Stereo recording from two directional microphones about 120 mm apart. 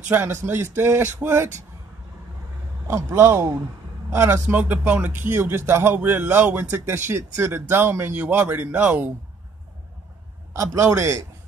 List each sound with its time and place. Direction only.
0.1 s speech: 20° right (ahead or behind)
2.9 s speech: 25° right (ahead or behind)
10.5 s speech: 25° right (ahead or behind)